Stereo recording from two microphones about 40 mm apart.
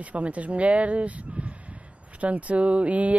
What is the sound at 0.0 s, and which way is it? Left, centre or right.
Speech, right.